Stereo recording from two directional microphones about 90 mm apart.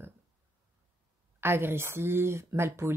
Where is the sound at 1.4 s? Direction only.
25° right (ahead or behind).